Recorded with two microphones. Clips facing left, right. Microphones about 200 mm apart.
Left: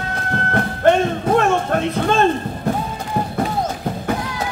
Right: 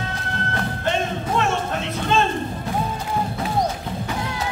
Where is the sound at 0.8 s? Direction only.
55° left (ahead or behind).